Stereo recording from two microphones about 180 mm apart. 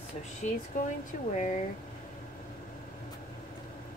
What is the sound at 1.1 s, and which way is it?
Speech, 45° left (ahead or behind).